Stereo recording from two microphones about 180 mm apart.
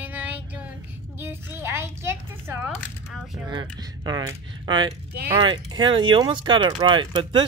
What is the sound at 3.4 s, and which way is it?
A child's voice, 25° right (ahead or behind).